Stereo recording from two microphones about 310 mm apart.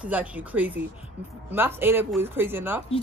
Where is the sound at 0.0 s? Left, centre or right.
Centre.